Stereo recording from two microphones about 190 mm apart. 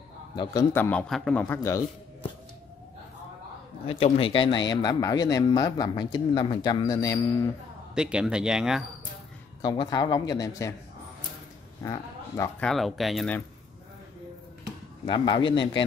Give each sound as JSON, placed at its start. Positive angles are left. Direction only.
{"t": 0.4, "sound": "a man's voice", "side_deg": 20}
{"t": 3.8, "sound": "speech", "side_deg": 30}
{"t": 7.9, "sound": "speech", "side_deg": -5}
{"t": 9.6, "sound": "speech", "side_deg": 20}
{"t": 11.8, "sound": "speech", "side_deg": 15}
{"t": 12.6, "sound": "speech", "side_deg": 0}
{"t": 15.0, "sound": "speech", "side_deg": 25}